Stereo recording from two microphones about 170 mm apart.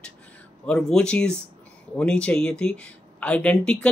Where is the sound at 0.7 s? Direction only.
5° left (ahead or behind).